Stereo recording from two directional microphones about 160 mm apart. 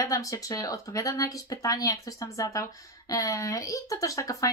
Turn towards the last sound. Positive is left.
turn(degrees=20)  # may be behind; listen again after turning